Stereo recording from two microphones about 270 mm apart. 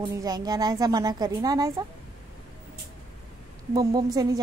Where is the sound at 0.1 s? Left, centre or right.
Centre.